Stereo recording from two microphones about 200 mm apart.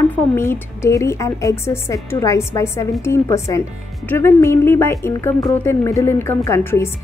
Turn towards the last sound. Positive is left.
turn(degrees=15)  # may be behind; listen again after turning